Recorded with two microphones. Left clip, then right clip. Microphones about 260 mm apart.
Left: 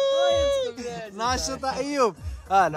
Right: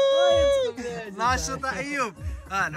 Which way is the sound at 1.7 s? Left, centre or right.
Centre.